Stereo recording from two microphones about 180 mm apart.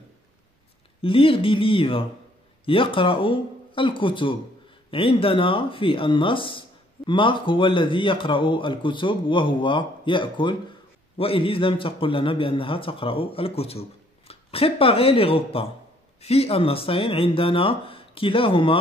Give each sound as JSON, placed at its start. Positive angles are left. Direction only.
{"t": 1.0, "sound": "a man's voice", "side_deg": 30}